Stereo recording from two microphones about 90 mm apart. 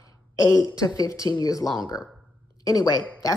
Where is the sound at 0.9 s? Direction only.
40° left (ahead or behind).